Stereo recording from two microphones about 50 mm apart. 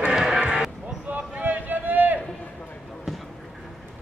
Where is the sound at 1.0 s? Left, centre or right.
Right.